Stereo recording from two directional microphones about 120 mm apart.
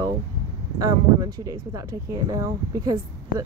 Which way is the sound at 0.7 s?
30° right (ahead or behind).